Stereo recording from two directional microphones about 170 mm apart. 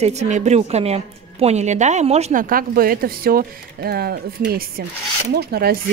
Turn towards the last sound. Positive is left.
turn(degrees=-65)  # may be behind; listen again after turning